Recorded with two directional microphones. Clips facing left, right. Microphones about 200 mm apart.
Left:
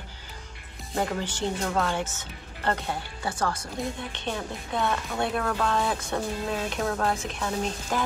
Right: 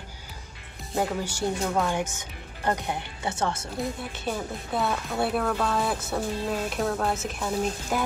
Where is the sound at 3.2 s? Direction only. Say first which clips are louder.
Right 1 dB; 25° right (ahead or behind).